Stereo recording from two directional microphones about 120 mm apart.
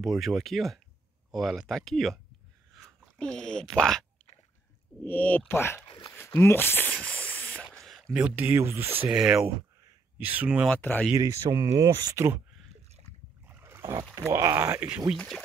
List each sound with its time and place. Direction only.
0.0 s speech: centre (ahead or behind)
5.0 s speech: 15° left (ahead or behind)
7.0 s spray: 10° left (ahead or behind)
7.7 s a sound: centre (ahead or behind)
8.2 s speech: 15° right (ahead or behind)
9.1 s speech: 5° right (ahead or behind)
10.7 s speech: 10° left (ahead or behind)
11.1 s speech: 30° right (ahead or behind)
13.5 s a sound: 20° right (ahead or behind)
14.1 s speech: 25° right (ahead or behind)
15.1 s speech: centre (ahead or behind)